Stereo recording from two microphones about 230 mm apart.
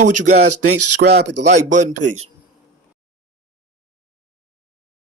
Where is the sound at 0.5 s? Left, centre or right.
Right.